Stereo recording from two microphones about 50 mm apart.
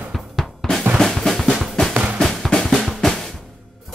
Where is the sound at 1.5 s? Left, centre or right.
Centre.